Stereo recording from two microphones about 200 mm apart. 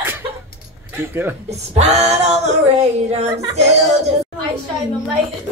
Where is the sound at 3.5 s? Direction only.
35° right (ahead or behind).